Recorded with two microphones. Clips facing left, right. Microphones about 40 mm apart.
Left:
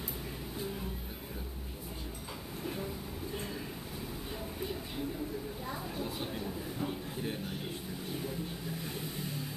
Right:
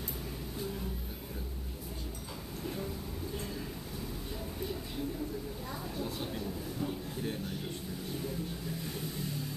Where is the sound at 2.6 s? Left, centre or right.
Centre.